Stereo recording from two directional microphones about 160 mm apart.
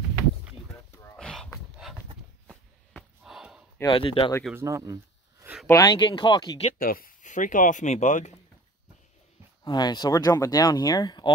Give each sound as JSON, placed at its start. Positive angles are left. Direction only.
{"t": 1.1, "sound": "a sound", "side_deg": 5}
{"t": 3.8, "sound": "speech", "side_deg": 35}
{"t": 4.6, "sound": "a sound", "side_deg": -20}
{"t": 5.7, "sound": "speech", "side_deg": 25}
{"t": 6.8, "sound": "speech", "side_deg": 65}
{"t": 9.7, "sound": "speech", "side_deg": 25}